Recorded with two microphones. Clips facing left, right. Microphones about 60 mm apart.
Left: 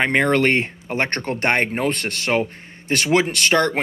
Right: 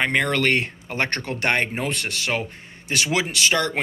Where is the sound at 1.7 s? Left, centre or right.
Left.